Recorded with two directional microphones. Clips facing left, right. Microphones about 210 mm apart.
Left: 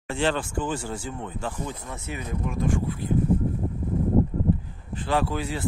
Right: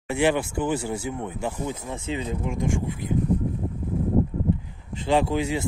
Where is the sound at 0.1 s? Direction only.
10° right (ahead or behind).